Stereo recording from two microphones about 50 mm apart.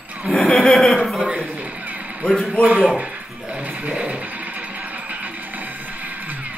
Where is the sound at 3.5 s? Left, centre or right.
Right.